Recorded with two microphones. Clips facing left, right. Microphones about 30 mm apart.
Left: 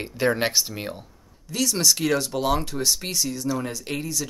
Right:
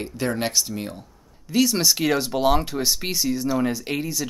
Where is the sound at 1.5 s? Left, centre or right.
Centre.